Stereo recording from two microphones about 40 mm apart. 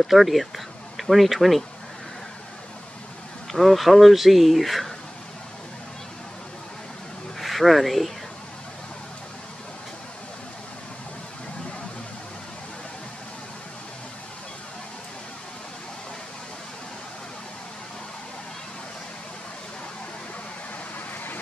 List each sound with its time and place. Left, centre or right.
0.0 s speech: centre
3.5 s speech: centre
7.3 s speech: centre